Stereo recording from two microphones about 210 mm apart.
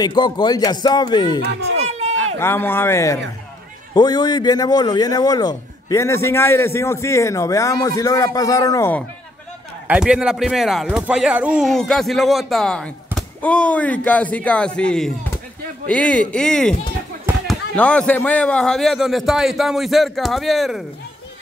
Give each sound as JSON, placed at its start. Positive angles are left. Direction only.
{"t": 0.0, "sound": "a man's voice", "side_deg": 20}
{"t": 1.8, "sound": "run", "side_deg": -30}
{"t": 2.3, "sound": "a man's voice", "side_deg": 10}
{"t": 9.8, "sound": "speech", "side_deg": -5}